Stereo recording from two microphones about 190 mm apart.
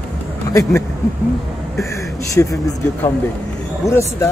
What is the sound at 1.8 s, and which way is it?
Speech, 15° left (ahead or behind).